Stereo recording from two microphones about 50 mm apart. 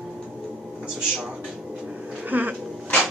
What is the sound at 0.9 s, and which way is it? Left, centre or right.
Speech, centre.